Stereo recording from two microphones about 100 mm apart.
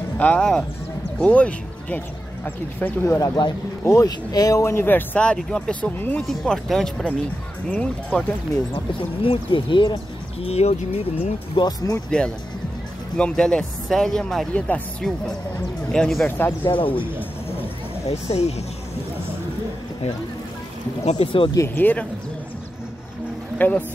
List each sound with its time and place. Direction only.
0.2 s speech: 10° left (ahead or behind)
3.2 s speech: 50° left (ahead or behind)
3.8 s speech: 30° left (ahead or behind); by 6.2 s 15° left (ahead or behind)
6.2 s speech: 5° left (ahead or behind)
8.7 s speech: 60° left (ahead or behind)
10.4 s speech: 85° left
11.5 s speech: 40° left (ahead or behind)
13.2 s speech: 10° left (ahead or behind)
16.3 s speech: 20° left (ahead or behind)
16.6 s speech: 60° left (ahead or behind)
18.0 s speech: 90° left
21.0 s speech: 70° left (ahead or behind)
21.7 s speech: 20° left (ahead or behind)
23.6 s speech: 20° left (ahead or behind)